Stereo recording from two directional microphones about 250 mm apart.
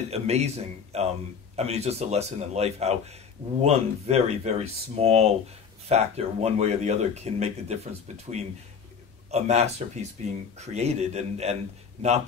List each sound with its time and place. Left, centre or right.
0.1 s speech: right